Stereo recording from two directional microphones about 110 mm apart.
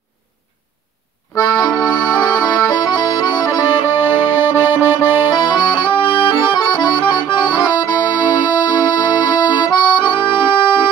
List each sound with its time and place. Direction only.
1.3 s accordion: 30° left (ahead or behind)
1.7 s music: centre (ahead or behind)
2.4 s accordion: 35° left (ahead or behind)